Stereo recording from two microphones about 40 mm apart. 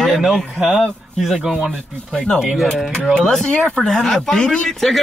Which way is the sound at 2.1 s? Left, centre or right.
Centre.